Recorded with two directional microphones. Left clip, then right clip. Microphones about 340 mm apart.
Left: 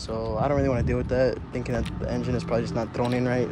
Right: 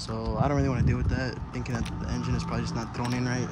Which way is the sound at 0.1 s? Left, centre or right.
Centre.